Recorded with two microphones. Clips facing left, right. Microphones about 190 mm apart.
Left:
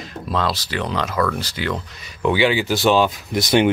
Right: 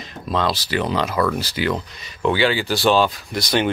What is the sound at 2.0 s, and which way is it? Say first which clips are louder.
Speech: left 1 dB; 10° left (ahead or behind).